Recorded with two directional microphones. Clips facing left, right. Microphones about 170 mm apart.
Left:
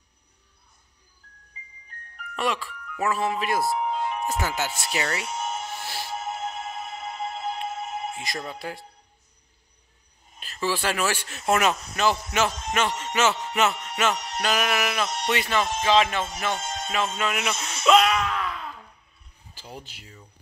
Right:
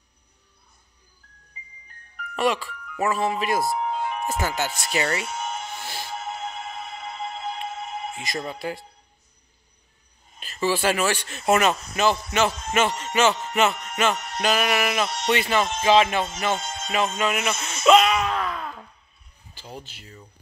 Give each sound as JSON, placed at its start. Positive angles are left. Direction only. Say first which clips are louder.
{"t": 2.3, "sound": "music", "louder": "right 4 dB", "side_deg": 0}
{"t": 10.4, "sound": "music", "louder": "right 4 dB", "side_deg": 0}
{"t": 14.4, "sound": "music", "louder": "right 3 dB", "side_deg": 0}
{"t": 17.6, "sound": "speech", "louder": "right 2 dB", "side_deg": -5}
{"t": 18.3, "sound": "a sound", "louder": "right 3 dB", "side_deg": -45}
{"t": 19.5, "sound": "speech", "louder": "right 2 dB", "side_deg": 10}